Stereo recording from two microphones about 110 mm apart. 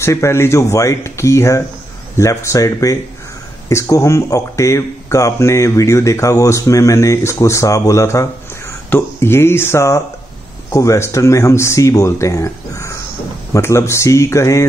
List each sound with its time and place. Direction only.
0.0 s speech: 25° left (ahead or behind)